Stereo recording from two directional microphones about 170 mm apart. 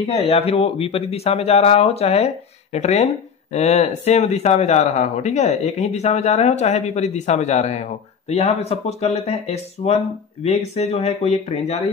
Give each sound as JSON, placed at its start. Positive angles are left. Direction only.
{"t": 0.0, "sound": "speech", "side_deg": 35}